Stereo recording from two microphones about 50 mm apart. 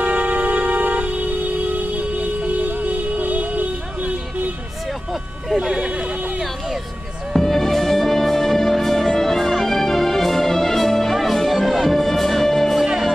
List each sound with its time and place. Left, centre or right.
0.1 s music: right
5.5 s sheep: centre
7.3 s music: centre
12.8 s music: centre